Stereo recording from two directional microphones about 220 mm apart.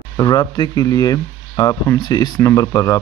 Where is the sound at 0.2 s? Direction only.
20° left (ahead or behind).